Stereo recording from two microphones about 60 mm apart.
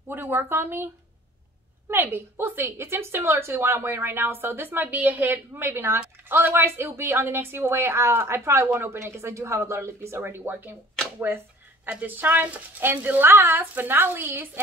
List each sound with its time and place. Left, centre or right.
0.1 s a woman's voice: right
1.9 s a woman's voice: right
5.6 s a woman's voice: right
11.1 s a sound: right
11.9 s a woman's voice: right